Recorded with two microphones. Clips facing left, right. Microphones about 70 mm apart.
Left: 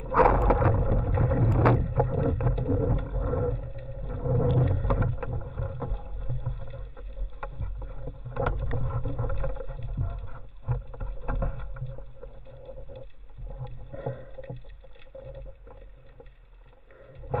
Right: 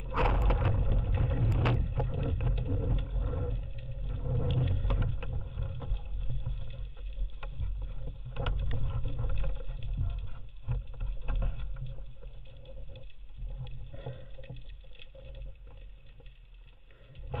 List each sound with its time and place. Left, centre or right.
0.0 s a sound: left
0.5 s vehicle: left
1.6 s boat: left
13.7 s rowboat: left
15.1 s vehicle: left
17.3 s a sound: left